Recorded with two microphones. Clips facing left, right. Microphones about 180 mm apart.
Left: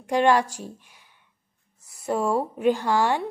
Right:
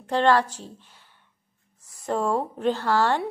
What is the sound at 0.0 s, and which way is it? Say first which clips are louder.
Speech: left 1 dB; 10° left (ahead or behind).